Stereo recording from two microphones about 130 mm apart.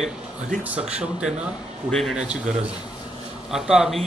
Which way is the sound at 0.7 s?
10° right (ahead or behind).